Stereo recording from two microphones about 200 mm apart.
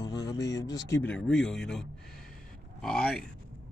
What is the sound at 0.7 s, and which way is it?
Speech, 15° left (ahead or behind).